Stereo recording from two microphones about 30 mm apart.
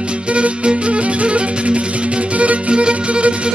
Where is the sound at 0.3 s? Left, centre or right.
Right.